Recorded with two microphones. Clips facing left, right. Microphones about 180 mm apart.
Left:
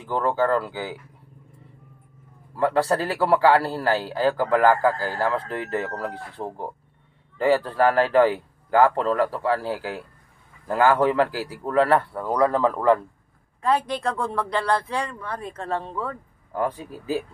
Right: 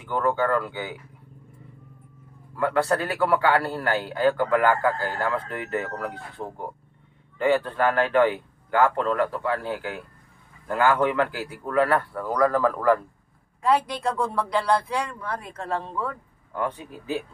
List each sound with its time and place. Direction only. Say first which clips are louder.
0.0 s speech: left 1 dB; 30° left (ahead or behind)
2.5 s speech: left 2 dB; 35° left (ahead or behind)
13.7 s speech: even; 5° right (ahead or behind)
16.5 s speech: left 3 dB; 35° left (ahead or behind)